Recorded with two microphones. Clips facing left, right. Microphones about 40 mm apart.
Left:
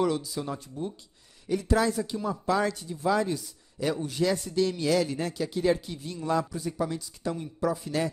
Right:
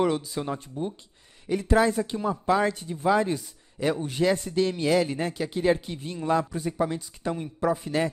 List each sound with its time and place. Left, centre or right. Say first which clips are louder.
0.0 s speech: right 2 dB; right